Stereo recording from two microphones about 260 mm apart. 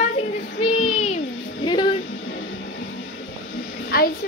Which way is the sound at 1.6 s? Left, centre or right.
Centre.